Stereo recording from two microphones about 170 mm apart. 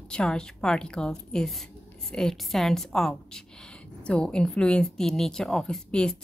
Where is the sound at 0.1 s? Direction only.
5° left (ahead or behind).